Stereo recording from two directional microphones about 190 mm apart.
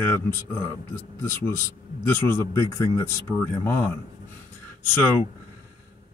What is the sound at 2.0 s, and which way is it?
Speech, 15° left (ahead or behind).